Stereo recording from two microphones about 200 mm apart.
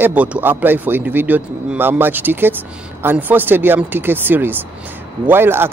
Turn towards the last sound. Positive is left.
turn(degrees=-10)  # may be behind; listen again after turning